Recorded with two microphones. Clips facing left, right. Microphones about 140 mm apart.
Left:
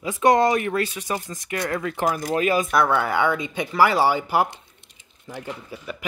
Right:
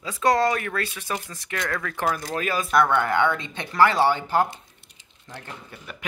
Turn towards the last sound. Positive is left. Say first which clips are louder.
# left 6 dB
turn(degrees=5)  # may be behind; listen again after turning